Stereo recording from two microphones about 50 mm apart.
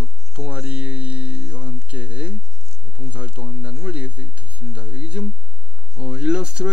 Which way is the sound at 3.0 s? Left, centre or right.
Right.